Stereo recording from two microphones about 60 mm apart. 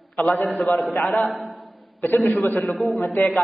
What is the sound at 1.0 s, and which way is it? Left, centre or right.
A man's voice, centre.